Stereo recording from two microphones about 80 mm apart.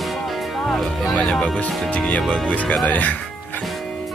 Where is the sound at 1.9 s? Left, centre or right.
Centre.